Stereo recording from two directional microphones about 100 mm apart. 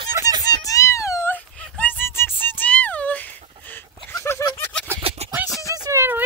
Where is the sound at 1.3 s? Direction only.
20° left (ahead or behind).